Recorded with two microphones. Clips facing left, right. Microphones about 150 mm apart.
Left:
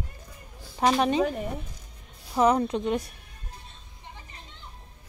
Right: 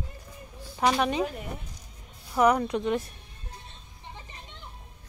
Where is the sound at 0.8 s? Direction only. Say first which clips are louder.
Left 2 dB; 25° left (ahead or behind).